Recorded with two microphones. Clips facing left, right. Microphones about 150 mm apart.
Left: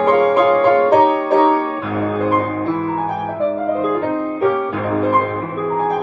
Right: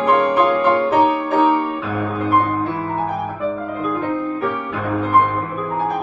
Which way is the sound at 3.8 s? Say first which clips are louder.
Left 3 dB; 35° left (ahead or behind).